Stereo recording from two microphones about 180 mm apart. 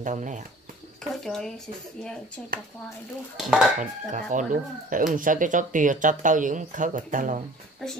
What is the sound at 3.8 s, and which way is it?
Speech, 45° right (ahead or behind).